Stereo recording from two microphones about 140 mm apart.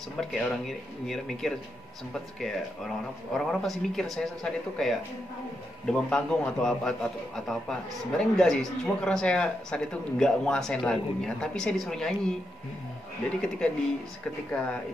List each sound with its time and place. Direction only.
0.2 s speech: 5° left (ahead or behind)
13.6 s speech: 5° left (ahead or behind)